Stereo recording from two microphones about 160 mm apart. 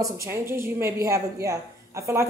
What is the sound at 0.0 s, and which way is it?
A woman's voice, 15° right (ahead or behind).